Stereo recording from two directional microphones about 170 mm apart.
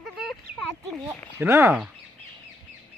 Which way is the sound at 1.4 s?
15° right (ahead or behind).